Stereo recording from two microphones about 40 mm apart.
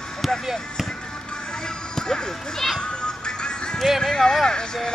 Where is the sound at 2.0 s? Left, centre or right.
Centre.